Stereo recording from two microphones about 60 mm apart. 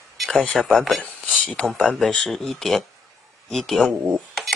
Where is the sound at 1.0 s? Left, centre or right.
Left.